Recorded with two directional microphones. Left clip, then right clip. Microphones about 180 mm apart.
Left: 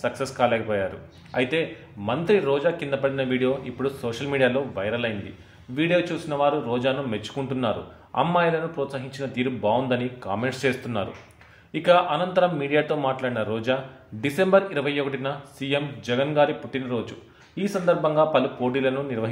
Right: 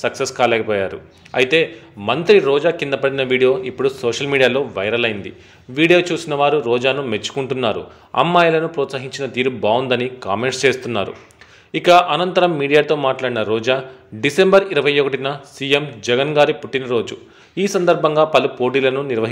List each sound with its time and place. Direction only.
0.0 s a man's voice: 25° right (ahead or behind)